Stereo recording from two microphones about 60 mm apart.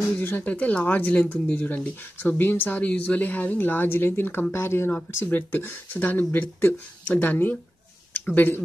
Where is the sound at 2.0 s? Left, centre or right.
Left.